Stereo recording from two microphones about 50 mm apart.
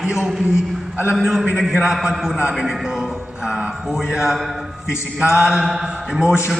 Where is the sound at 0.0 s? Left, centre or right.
Centre.